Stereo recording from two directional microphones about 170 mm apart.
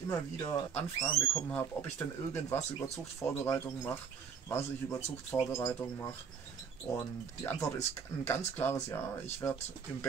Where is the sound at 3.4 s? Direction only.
15° left (ahead or behind).